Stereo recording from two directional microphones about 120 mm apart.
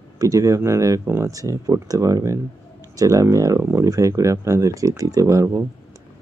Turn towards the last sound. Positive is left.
turn(degrees=-25)  # may be behind; listen again after turning